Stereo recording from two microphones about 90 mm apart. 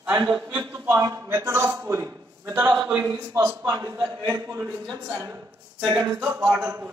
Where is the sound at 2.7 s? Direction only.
35° right (ahead or behind).